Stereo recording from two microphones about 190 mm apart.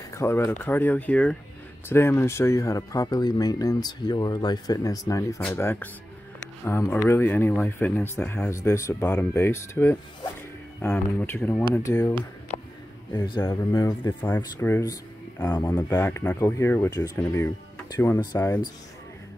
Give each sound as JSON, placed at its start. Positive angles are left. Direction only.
{"t": 0.1, "sound": "speech", "side_deg": 15}
{"t": 13.1, "sound": "speech", "side_deg": 25}